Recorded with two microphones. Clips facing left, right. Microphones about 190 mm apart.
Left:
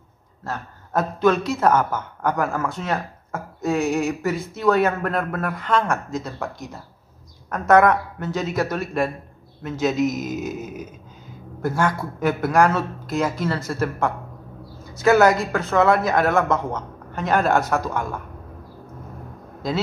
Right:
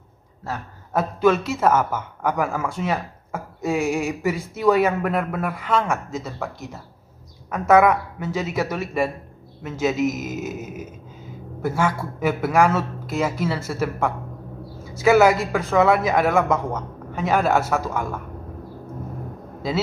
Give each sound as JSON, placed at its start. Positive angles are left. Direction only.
{"t": 0.4, "sound": "a man's voice", "side_deg": -10}